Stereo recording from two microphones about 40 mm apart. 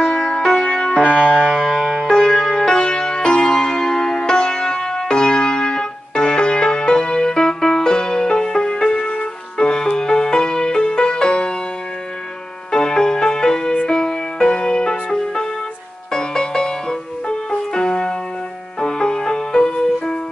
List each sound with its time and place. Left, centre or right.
0.4 s music: centre
0.7 s music: left
1.6 s music: centre; by 11.5 s left
12.7 s music: centre